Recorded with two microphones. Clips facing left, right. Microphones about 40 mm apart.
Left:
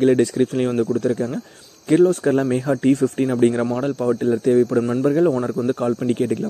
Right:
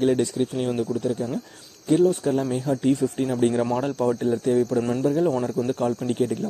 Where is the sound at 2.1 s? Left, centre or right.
Left.